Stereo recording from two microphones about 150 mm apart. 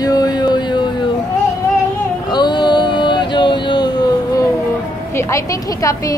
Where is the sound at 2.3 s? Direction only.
30° left (ahead or behind).